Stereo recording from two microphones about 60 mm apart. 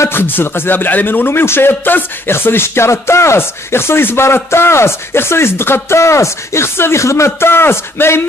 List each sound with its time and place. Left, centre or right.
0.1 s speech: left